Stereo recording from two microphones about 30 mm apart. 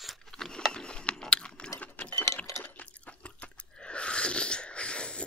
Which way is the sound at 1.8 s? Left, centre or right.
Left.